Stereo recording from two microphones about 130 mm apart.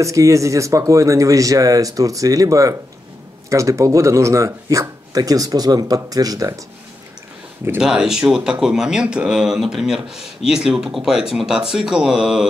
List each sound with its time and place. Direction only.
0.0 s speech: 25° right (ahead or behind)
7.8 s speech: 5° right (ahead or behind)